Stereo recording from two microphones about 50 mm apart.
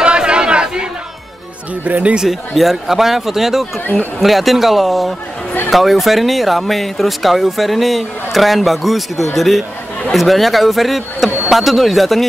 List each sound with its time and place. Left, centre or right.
0.0 s crowd: centre
1.9 s speech: right
2.1 s a man's voice: centre